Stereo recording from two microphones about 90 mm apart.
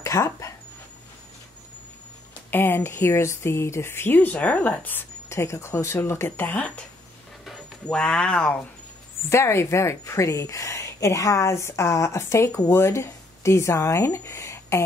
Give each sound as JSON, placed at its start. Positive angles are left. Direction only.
{"t": 0.0, "sound": "speech", "side_deg": 35}
{"t": 2.5, "sound": "speech", "side_deg": 25}
{"t": 7.8, "sound": "speech", "side_deg": 10}
{"t": 9.3, "sound": "a woman's voice", "side_deg": 30}